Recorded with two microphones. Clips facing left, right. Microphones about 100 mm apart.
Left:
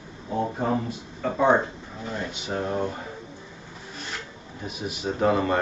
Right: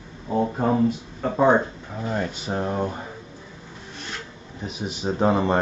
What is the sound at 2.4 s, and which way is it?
Speech, 35° right (ahead or behind).